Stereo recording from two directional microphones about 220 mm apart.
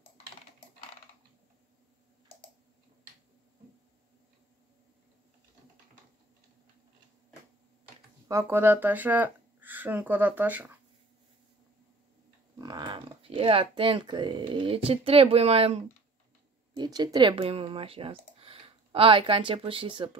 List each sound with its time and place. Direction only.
8.3 s speech: 10° right (ahead or behind)
12.5 s a sound: 20° right (ahead or behind)
14.9 s speech: 25° right (ahead or behind)